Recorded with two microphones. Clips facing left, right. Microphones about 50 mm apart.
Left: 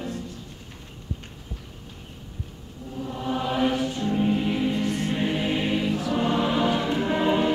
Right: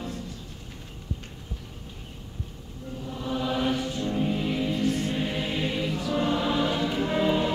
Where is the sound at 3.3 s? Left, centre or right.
Left.